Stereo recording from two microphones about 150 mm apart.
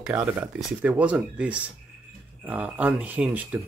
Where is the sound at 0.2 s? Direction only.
15° right (ahead or behind).